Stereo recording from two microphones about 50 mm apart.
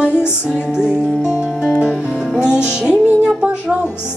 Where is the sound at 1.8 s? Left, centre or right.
Centre.